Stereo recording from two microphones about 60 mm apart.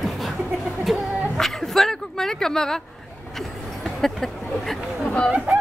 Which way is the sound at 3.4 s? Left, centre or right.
Centre.